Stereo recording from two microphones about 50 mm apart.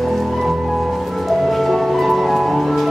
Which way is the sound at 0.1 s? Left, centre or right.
Centre.